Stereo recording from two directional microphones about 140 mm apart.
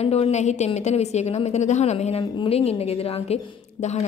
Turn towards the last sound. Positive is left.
turn(degrees=50)  # may be behind; listen again after turning